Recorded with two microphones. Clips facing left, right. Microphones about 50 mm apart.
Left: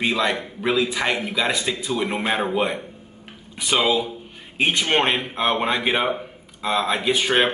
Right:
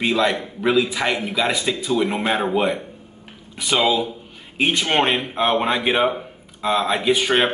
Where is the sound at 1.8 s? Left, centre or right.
Centre.